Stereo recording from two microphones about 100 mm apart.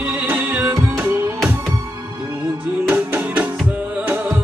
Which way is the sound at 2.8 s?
15° right (ahead or behind).